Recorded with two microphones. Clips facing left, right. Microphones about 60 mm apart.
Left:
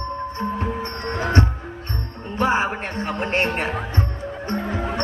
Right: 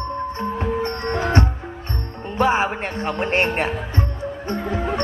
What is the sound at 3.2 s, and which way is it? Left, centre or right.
Speech, right.